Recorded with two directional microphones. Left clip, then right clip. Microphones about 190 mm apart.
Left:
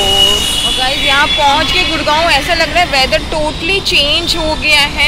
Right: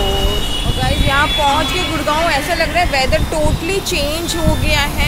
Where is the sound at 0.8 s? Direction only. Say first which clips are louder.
Left 3 dB; 15° right (ahead or behind).